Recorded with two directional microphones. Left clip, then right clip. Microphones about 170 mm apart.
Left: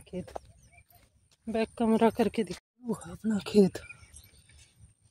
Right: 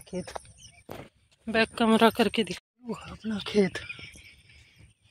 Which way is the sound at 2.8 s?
30° left (ahead or behind).